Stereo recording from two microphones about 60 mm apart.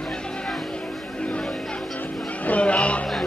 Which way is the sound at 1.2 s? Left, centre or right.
Centre.